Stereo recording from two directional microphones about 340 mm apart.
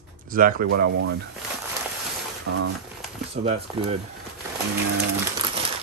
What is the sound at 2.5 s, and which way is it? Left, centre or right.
Speech, right.